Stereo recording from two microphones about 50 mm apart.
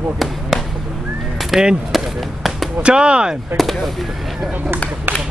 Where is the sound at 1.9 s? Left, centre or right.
Centre.